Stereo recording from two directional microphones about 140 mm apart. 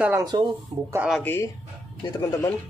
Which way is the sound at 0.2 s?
30° right (ahead or behind).